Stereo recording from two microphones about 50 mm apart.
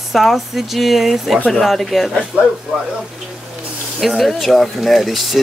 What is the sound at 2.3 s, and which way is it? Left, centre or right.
Speech, right.